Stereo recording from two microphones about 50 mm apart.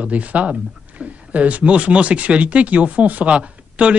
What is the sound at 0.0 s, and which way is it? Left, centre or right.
Speech, right.